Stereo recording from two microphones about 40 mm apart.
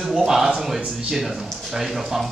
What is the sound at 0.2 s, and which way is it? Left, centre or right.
Speech, centre.